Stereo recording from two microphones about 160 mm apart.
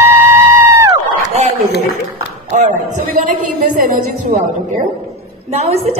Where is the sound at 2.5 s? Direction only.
50° right (ahead or behind).